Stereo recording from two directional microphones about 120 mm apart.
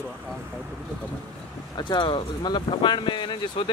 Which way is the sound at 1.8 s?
40° left (ahead or behind).